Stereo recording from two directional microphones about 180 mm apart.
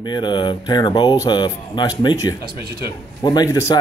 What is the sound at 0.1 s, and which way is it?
Speech, 25° left (ahead or behind).